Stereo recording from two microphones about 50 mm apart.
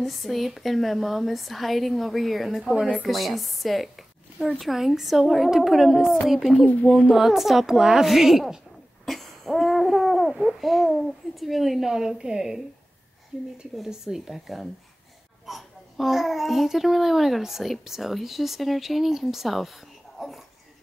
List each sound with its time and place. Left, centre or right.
0.0 s a child's voice: centre
2.6 s speech: centre
3.1 s a child's voice: centre
9.0 s owl: centre
10.3 s a child's voice: centre
13.3 s a woman's voice: centre
13.8 s a child's voice: centre